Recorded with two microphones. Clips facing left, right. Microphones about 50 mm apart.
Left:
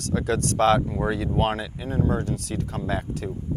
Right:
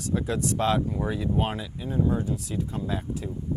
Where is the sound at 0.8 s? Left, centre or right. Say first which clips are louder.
Left 3 dB; left.